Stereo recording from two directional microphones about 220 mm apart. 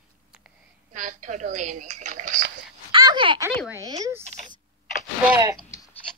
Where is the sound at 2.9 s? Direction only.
20° right (ahead or behind).